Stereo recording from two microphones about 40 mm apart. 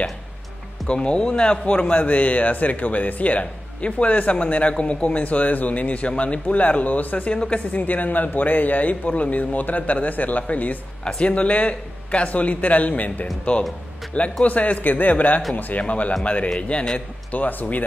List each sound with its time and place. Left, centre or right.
0.8 s speech: left
7.3 s a woman's voice: left
7.7 s speech: left
15.8 s speech: left
17.3 s speech: left